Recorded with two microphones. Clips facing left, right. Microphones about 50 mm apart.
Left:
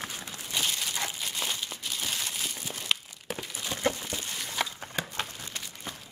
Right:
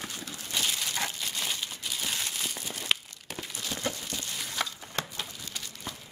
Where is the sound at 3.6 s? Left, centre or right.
Left.